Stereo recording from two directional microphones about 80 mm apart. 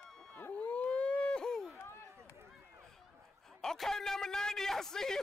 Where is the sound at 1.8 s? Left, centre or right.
Left.